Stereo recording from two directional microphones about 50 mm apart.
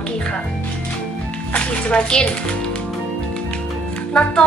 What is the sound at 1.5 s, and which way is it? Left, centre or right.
Speech, left.